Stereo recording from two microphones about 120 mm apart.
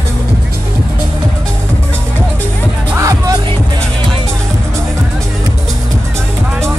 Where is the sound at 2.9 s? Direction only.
25° right (ahead or behind).